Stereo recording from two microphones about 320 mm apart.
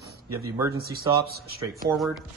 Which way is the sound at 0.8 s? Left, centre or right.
Right.